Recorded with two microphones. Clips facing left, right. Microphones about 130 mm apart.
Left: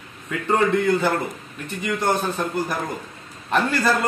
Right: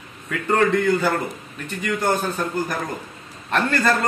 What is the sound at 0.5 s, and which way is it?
Speech, 20° left (ahead or behind).